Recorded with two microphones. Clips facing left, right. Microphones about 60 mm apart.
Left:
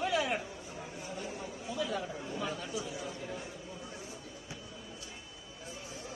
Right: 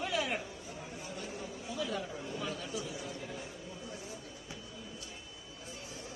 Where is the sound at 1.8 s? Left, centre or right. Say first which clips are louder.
Left 2 dB; centre.